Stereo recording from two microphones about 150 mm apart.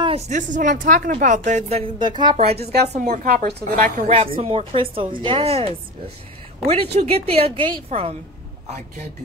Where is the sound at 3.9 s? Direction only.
50° right (ahead or behind).